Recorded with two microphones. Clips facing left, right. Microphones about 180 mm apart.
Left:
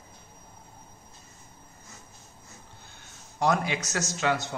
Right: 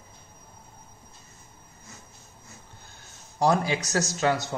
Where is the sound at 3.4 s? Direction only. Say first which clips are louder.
Right 3 dB; 35° right (ahead or behind).